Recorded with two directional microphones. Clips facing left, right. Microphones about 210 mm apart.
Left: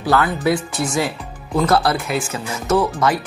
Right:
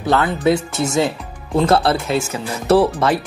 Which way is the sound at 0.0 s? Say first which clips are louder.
Right 1 dB; 25° right (ahead or behind).